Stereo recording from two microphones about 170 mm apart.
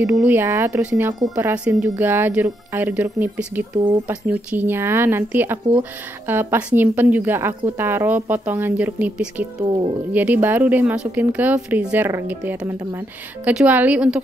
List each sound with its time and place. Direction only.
0.1 s speech: 10° right (ahead or behind)
9.6 s speech: 25° right (ahead or behind)
10.1 s speech: 10° right (ahead or behind)